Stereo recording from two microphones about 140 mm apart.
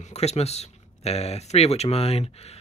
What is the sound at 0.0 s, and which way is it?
Speech, 50° left (ahead or behind).